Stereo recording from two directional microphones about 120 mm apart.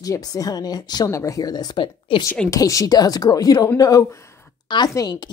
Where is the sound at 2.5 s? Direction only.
25° left (ahead or behind).